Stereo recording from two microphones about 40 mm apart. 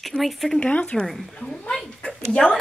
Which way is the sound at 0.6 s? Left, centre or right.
Left.